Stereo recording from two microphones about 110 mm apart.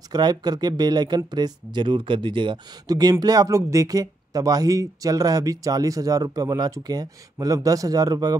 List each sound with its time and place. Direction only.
0.1 s speech: 40° right (ahead or behind)